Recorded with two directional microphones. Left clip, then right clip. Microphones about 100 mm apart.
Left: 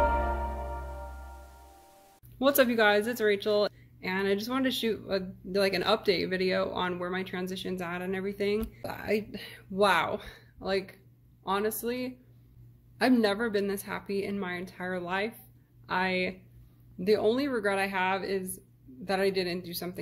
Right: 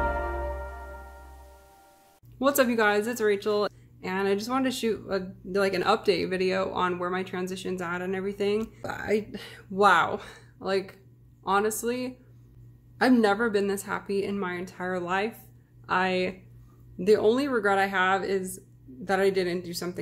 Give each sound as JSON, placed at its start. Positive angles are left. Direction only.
{"t": 2.3, "sound": "a woman's voice", "side_deg": -30}